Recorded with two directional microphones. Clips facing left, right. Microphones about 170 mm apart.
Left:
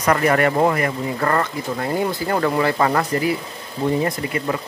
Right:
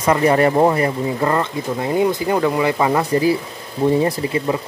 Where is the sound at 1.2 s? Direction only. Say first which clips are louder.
Even; 15° right (ahead or behind).